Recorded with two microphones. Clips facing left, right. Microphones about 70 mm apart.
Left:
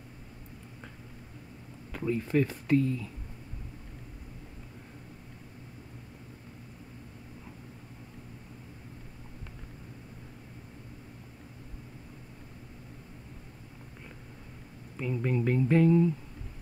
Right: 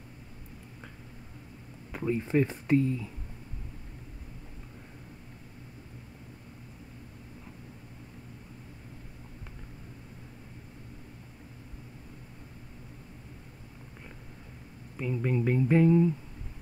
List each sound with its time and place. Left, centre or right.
1.9 s speech: centre
15.0 s speech: centre